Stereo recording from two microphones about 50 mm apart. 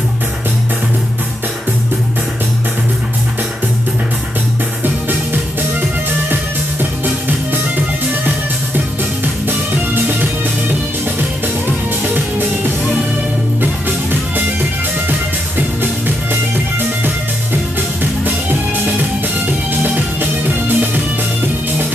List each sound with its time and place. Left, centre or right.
4.8 s music: right
11.1 s music: right
18.2 s music: right